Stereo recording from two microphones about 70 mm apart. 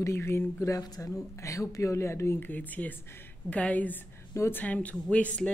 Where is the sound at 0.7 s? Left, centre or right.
Left.